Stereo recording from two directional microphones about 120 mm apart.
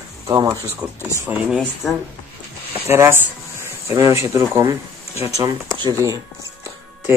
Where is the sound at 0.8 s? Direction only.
10° right (ahead or behind).